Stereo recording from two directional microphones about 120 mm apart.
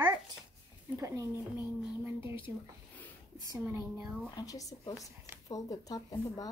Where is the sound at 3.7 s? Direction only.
25° right (ahead or behind).